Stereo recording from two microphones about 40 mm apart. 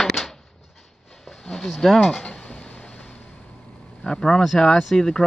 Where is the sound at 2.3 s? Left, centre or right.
Left.